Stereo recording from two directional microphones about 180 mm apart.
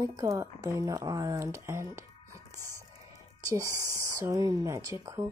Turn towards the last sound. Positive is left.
turn(degrees=-15)  # may be behind; listen again after turning